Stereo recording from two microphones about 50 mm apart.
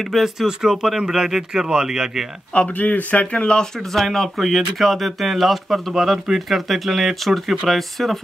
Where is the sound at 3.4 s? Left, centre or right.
Centre.